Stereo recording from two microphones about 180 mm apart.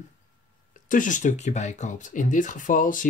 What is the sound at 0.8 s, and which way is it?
Speech, 45° left (ahead or behind).